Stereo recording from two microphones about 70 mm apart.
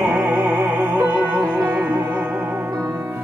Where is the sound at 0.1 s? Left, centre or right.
Right.